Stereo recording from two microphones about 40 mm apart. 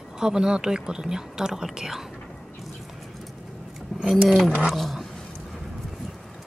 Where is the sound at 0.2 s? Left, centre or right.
Centre.